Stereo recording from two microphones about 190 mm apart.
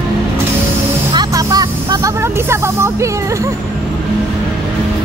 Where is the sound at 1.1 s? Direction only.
20° right (ahead or behind).